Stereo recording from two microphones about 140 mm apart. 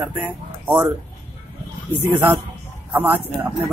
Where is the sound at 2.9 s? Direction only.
15° right (ahead or behind).